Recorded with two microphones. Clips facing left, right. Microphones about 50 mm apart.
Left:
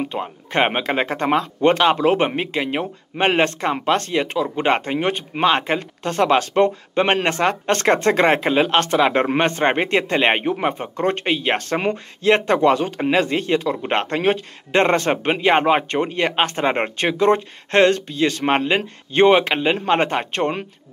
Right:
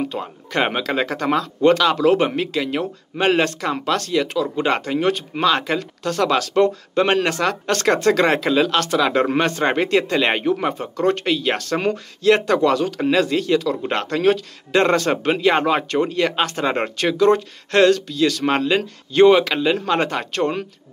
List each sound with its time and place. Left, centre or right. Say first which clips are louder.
0.1 s speech: left 1 dB; left